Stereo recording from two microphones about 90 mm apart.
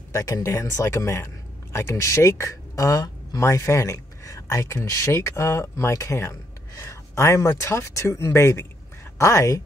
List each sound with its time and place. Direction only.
0.1 s speech: 35° left (ahead or behind)